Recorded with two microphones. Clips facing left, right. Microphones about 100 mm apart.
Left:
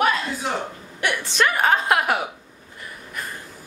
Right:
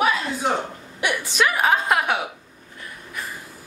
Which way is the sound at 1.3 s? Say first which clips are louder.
Left 1 dB; 5° right (ahead or behind).